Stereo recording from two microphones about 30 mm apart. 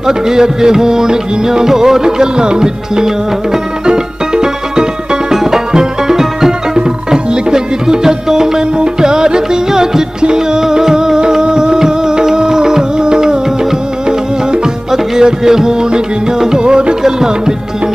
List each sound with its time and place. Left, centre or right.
0.0 s music: centre